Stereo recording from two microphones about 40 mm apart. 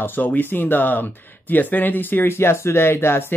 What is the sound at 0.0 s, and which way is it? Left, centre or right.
Speech, left.